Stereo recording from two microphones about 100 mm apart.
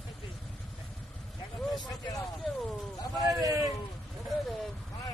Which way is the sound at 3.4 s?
35° right (ahead or behind).